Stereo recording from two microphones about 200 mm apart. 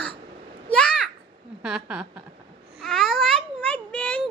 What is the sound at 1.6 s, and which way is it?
Speech, 5° right (ahead or behind).